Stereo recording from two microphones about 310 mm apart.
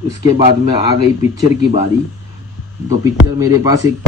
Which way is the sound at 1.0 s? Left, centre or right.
Left.